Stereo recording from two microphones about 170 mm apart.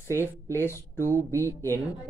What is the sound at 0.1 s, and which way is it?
Speech, 15° left (ahead or behind).